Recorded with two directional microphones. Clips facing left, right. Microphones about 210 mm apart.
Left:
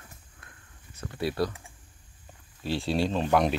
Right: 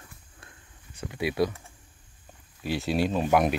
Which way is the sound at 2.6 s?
10° right (ahead or behind).